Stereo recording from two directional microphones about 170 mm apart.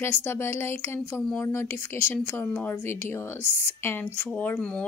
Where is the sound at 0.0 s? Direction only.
15° left (ahead or behind).